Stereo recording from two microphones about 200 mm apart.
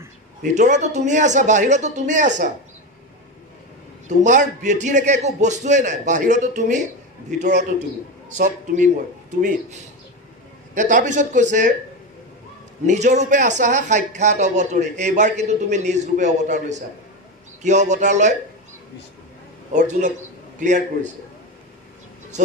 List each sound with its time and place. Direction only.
0.4 s a man's voice: 35° right (ahead or behind)
4.1 s a man's voice: 35° right (ahead or behind)
12.8 s a man's voice: 35° right (ahead or behind)
19.7 s a man's voice: 35° right (ahead or behind)